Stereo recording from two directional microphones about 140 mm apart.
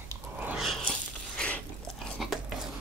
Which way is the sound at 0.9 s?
10° left (ahead or behind).